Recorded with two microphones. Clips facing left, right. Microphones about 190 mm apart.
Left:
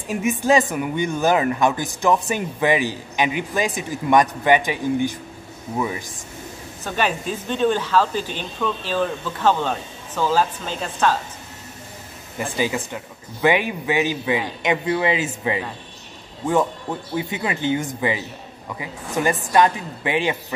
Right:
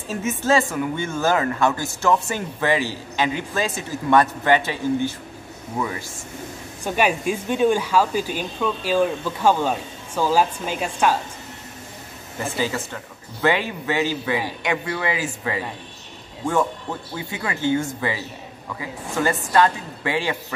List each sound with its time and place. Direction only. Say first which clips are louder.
0.1 s speech: left 2 dB; 15° left (ahead or behind)
6.8 s speech: right 2 dB; 10° right (ahead or behind)
12.5 s speech: left 2 dB; 15° left (ahead or behind)
17.1 s speech: left 6 dB; 20° left (ahead or behind)